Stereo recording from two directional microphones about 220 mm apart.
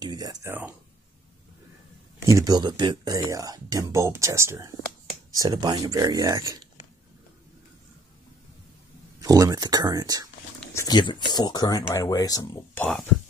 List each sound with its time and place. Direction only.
0.0 s a sound: 20° right (ahead or behind)
2.2 s speech: 15° right (ahead or behind)
9.2 s speech: 15° right (ahead or behind)
10.7 s speech: 15° left (ahead or behind)